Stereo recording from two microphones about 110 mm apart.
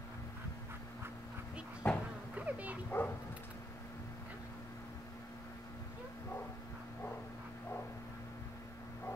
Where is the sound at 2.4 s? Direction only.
15° right (ahead or behind).